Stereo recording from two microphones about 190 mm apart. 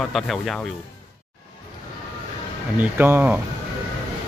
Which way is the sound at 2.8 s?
10° right (ahead or behind).